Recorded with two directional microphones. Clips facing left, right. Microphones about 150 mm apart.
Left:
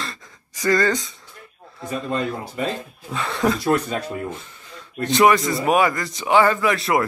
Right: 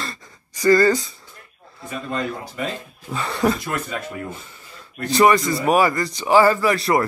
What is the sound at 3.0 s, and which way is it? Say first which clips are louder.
Speech: right 1 dB; centre (ahead or behind).